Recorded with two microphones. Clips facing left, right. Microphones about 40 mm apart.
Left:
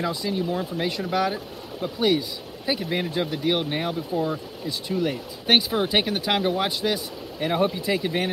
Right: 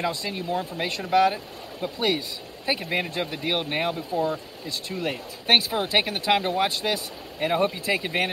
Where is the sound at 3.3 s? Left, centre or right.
Right.